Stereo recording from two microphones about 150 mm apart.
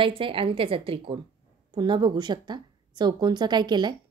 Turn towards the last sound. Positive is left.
turn(degrees=-30)  # may be behind; listen again after turning